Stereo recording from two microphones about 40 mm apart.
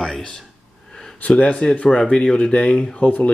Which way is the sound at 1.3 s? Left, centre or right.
Left.